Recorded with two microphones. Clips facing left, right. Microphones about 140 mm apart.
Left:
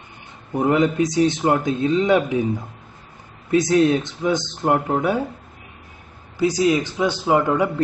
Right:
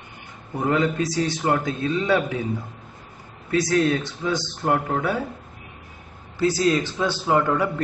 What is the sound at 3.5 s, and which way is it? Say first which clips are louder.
A man's voice: left 4 dB; 20° left (ahead or behind).